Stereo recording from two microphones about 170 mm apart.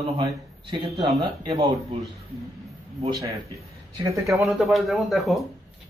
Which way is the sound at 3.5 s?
20° right (ahead or behind).